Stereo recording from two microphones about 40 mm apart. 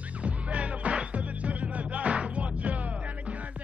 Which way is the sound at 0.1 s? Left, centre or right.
Right.